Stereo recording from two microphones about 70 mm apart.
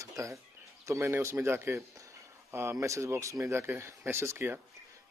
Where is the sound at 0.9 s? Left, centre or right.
Right.